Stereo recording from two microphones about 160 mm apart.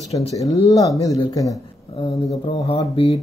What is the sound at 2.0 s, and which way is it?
Speech, 35° left (ahead or behind).